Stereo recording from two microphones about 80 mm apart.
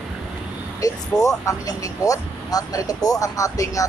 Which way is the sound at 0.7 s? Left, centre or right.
Left.